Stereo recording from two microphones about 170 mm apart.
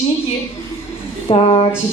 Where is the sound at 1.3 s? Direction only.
30° left (ahead or behind).